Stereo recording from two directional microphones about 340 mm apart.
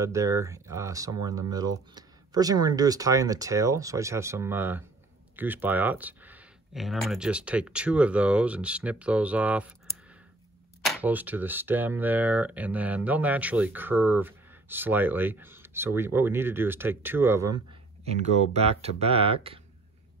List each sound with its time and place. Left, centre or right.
0.0 s speech: centre
10.8 s speech: centre
18.0 s speech: centre